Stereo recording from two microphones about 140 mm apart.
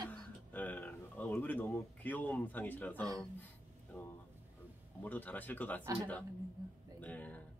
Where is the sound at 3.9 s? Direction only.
10° left (ahead or behind).